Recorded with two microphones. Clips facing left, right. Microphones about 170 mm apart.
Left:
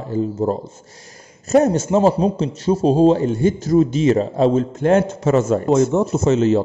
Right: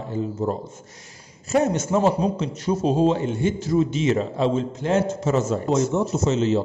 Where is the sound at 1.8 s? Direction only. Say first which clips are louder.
Left 5 dB; 30° left (ahead or behind).